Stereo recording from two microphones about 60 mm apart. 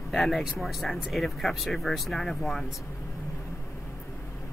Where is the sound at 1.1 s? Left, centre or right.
Centre.